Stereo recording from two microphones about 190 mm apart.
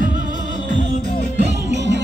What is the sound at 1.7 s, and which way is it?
Music, 65° right (ahead or behind).